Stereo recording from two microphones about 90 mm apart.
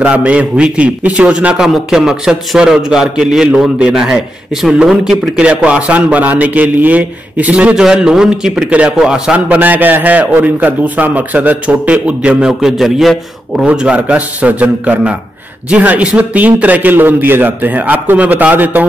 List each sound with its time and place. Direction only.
0.0 s a man's voice: 15° right (ahead or behind); by 13.7 s centre (ahead or behind)
13.7 s a man's voice: 15° right (ahead or behind)